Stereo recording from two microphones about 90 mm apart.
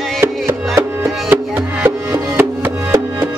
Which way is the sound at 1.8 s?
25° right (ahead or behind).